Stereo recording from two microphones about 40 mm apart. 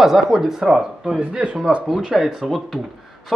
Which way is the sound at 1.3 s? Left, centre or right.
Right.